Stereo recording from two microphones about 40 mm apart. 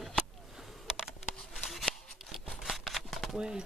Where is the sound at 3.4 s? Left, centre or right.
Right.